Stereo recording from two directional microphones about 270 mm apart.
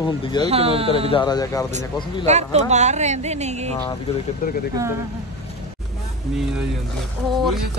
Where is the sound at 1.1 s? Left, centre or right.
Centre.